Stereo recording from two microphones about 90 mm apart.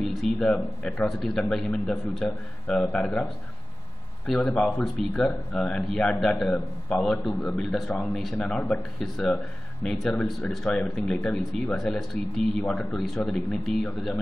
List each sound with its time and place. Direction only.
0.0 s a man's voice: 5° left (ahead or behind)
4.3 s a man's voice: 10° left (ahead or behind)